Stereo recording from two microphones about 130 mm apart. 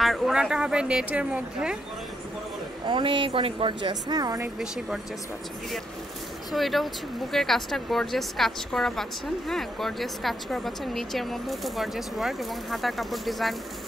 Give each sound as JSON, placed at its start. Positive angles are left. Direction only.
{"t": 0.0, "sound": "speech", "side_deg": -5}
{"t": 2.9, "sound": "speech", "side_deg": -40}
{"t": 4.6, "sound": "speech", "side_deg": -5}
{"t": 6.5, "sound": "speech", "side_deg": 0}